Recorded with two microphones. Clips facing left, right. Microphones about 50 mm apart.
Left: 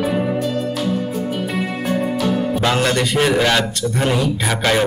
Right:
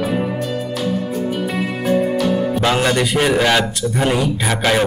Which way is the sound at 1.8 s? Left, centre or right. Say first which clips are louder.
Right 4 dB; centre.